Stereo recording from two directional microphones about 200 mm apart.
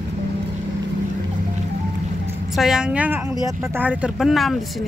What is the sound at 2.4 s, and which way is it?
Speech, centre (ahead or behind).